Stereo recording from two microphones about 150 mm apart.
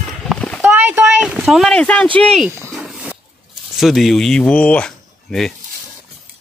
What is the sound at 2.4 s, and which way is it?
Speech, 15° right (ahead or behind).